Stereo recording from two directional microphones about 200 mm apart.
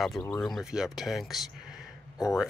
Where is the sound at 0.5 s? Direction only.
Centre (ahead or behind).